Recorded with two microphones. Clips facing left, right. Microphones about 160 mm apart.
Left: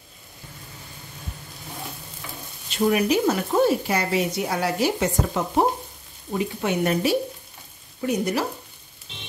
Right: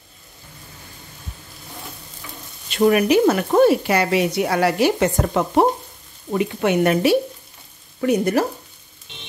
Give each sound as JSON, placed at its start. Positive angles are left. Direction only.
{"t": 2.7, "sound": "speech", "side_deg": -65}
{"t": 8.0, "sound": "speech", "side_deg": -60}